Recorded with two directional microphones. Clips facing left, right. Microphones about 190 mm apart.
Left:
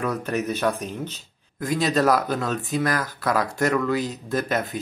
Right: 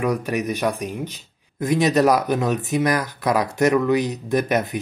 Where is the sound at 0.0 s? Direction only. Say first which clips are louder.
Right 3 dB; 15° right (ahead or behind).